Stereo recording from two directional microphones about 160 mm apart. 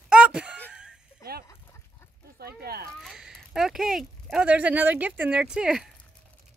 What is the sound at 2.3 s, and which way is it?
Speech, 75° right (ahead or behind).